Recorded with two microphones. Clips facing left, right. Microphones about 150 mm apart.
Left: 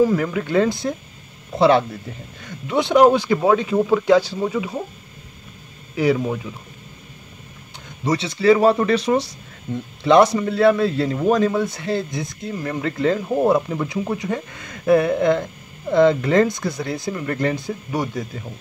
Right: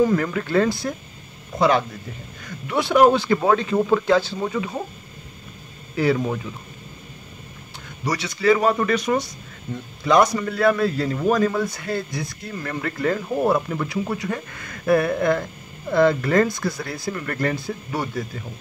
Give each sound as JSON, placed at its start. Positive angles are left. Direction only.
{"t": 0.0, "sound": "speech", "side_deg": 10}
{"t": 1.6, "sound": "speech", "side_deg": 30}
{"t": 2.4, "sound": "speech", "side_deg": 20}
{"t": 5.9, "sound": "speech", "side_deg": 15}
{"t": 8.0, "sound": "speech", "side_deg": 25}